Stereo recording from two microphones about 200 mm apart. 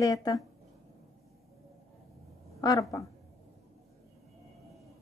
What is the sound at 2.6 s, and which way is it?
Speech, 15° left (ahead or behind).